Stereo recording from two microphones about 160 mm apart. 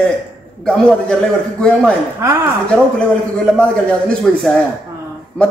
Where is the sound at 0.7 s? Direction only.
5° left (ahead or behind).